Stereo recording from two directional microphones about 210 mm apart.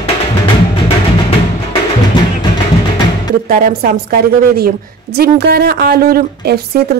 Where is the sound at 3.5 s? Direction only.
40° right (ahead or behind).